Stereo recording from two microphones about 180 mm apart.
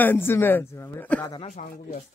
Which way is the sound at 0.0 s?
10° left (ahead or behind).